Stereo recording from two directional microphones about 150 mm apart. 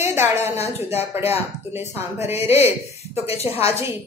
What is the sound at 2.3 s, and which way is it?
Speech, 45° left (ahead or behind).